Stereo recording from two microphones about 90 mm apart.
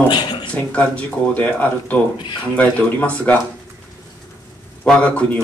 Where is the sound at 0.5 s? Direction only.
15° left (ahead or behind).